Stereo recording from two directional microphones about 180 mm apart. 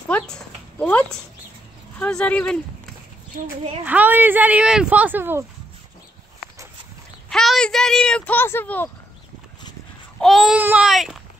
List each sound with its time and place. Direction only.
0.1 s speech: 5° left (ahead or behind)
3.8 s speech: 10° right (ahead or behind)
7.2 s speech: centre (ahead or behind)
10.2 s speech: centre (ahead or behind)